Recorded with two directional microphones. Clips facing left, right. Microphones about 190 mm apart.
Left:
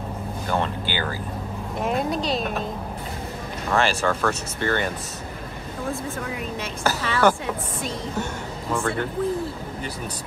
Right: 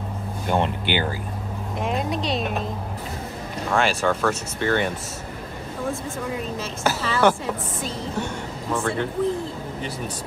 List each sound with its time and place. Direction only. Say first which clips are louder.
0.5 s speech: right 3 dB; 20° right (ahead or behind)
1.8 s speech: left 1 dB; centre (ahead or behind)
3.7 s speech: right 1 dB; centre (ahead or behind)
6.8 s speech: even; centre (ahead or behind)
8.7 s speech: even; centre (ahead or behind)